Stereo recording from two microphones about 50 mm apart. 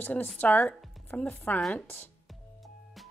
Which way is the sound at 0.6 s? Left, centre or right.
Left.